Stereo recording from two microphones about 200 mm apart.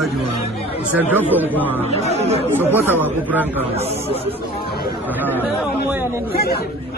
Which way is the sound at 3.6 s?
30° right (ahead or behind).